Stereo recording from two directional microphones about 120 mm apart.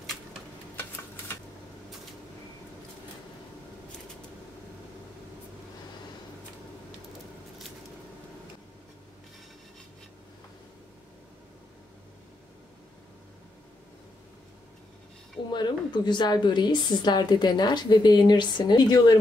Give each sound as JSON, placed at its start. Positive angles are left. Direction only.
{"t": 15.5, "sound": "a woman's voice", "side_deg": 40}